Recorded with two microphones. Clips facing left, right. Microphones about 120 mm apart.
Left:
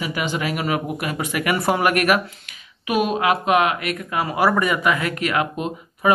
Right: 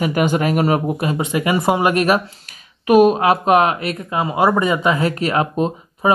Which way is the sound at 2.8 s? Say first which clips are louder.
Right 8 dB; 40° right (ahead or behind).